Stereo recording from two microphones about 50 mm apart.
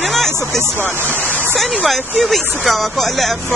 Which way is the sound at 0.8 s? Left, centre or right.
Right.